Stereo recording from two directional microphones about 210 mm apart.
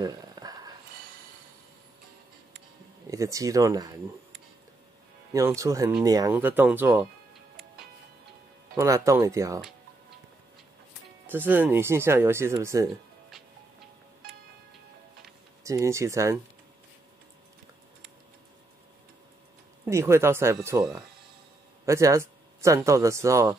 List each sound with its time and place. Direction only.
0.0 s a sound: 20° right (ahead or behind)
3.1 s speech: 15° right (ahead or behind)
5.3 s speech: 15° right (ahead or behind)
8.7 s speech: 15° right (ahead or behind)
11.2 s speech: 10° right (ahead or behind)
15.6 s speech: 15° right (ahead or behind)
19.9 s speech: 10° right (ahead or behind)